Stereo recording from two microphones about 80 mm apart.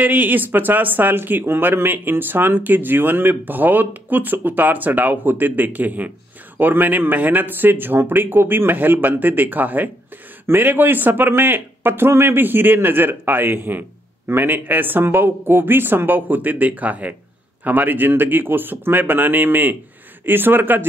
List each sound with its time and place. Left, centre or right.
0.0 s speech: right